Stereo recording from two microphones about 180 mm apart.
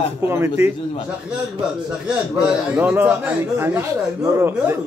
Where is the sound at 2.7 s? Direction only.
10° right (ahead or behind).